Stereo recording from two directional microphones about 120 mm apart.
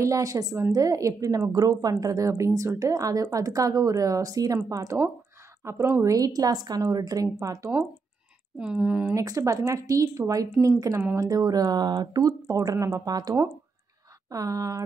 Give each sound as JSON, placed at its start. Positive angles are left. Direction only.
{"t": 0.0, "sound": "a woman's voice", "side_deg": -30}
{"t": 6.1, "sound": "speech", "side_deg": -30}
{"t": 8.5, "sound": "speech", "side_deg": -10}
{"t": 9.1, "sound": "a woman's voice", "side_deg": -30}